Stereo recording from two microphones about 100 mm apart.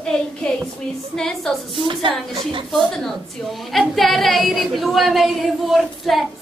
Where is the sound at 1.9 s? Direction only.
55° right (ahead or behind).